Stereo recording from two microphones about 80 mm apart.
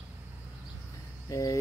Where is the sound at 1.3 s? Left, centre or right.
Left.